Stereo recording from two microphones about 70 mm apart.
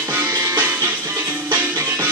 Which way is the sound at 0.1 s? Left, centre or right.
Right.